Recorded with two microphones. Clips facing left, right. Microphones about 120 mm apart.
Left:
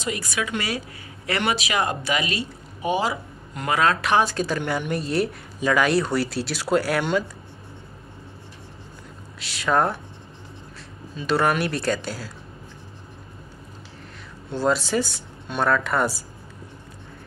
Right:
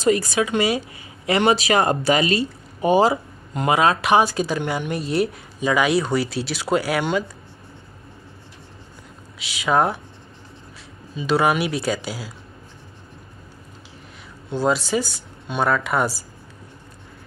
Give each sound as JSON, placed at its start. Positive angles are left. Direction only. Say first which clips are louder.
{"t": 0.0, "sound": "a woman's voice", "louder": "right 9 dB", "side_deg": -35}
{"t": 1.5, "sound": "speech", "louder": "right 6 dB", "side_deg": -40}
{"t": 3.5, "sound": "speech", "louder": "right 3 dB", "side_deg": -20}
{"t": 9.4, "sound": "speech", "louder": "right 2 dB", "side_deg": 0}
{"t": 11.1, "sound": "speech", "louder": "right 2 dB", "side_deg": -5}
{"t": 14.5, "sound": "speech", "louder": "right 1 dB", "side_deg": 0}